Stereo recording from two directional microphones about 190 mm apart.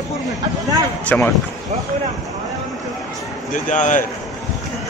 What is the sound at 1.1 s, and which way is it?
Speech, 10° left (ahead or behind).